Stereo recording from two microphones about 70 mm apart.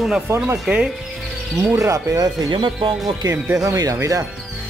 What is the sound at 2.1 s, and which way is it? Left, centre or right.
Speech, right.